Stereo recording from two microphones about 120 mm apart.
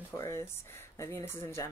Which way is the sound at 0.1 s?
25° left (ahead or behind).